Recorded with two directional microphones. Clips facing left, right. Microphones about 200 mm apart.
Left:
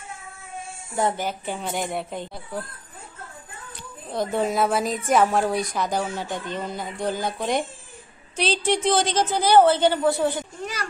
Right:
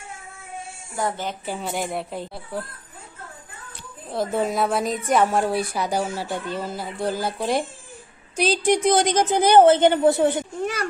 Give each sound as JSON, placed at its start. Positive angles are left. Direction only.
{"t": 1.4, "sound": "a woman's voice", "side_deg": -5}
{"t": 4.1, "sound": "a woman's voice", "side_deg": 0}
{"t": 10.6, "sound": "a sound", "side_deg": -55}